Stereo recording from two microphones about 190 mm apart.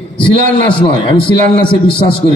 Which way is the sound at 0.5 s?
25° left (ahead or behind).